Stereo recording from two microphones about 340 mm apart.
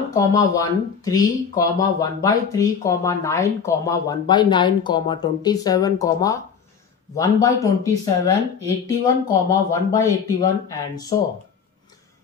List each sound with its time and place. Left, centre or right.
0.1 s speech: centre